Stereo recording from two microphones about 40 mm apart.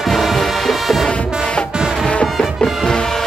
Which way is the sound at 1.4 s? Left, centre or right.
Left.